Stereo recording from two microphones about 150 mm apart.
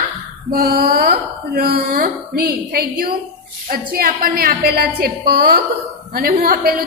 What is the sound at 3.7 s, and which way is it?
A woman's voice, 80° right.